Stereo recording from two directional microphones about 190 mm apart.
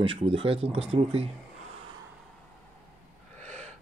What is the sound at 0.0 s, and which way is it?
Speech, 30° right (ahead or behind).